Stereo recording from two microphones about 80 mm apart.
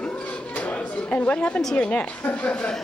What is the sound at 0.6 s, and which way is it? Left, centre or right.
A woman's voice, centre.